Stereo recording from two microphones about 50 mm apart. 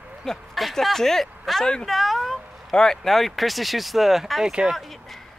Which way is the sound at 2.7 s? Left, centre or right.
Centre.